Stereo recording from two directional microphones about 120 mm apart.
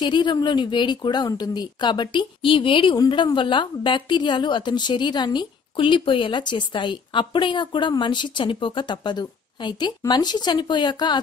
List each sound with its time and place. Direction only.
0.0 s a woman's voice: 40° left (ahead or behind)